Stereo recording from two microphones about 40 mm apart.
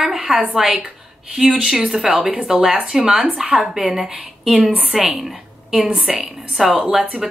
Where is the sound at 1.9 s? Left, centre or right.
Centre.